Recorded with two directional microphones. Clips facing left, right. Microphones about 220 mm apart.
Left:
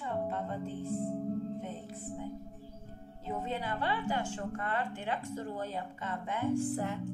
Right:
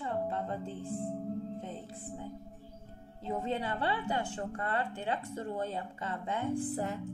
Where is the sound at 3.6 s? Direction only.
30° right (ahead or behind).